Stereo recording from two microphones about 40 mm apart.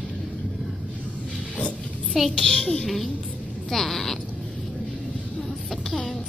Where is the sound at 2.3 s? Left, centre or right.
Centre.